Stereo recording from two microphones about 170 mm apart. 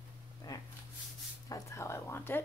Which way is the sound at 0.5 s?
25° left (ahead or behind).